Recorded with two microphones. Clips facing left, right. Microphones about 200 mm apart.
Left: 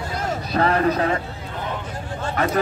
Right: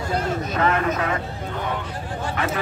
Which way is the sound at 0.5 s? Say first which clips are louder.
Left 4 dB; 35° left (ahead or behind).